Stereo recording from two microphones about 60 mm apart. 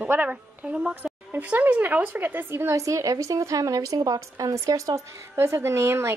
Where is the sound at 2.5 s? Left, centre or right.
Right.